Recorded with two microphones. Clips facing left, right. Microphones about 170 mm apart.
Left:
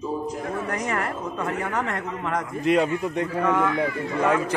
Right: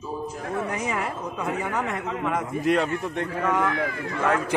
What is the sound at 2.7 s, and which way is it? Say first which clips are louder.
Speech: left 3 dB; 10° left (ahead or behind).